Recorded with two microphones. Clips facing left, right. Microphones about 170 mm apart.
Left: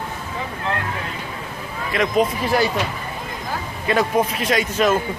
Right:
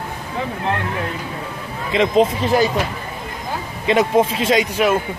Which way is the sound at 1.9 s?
25° right (ahead or behind).